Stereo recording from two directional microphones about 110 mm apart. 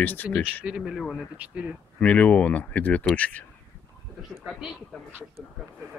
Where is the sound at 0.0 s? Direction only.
20° left (ahead or behind).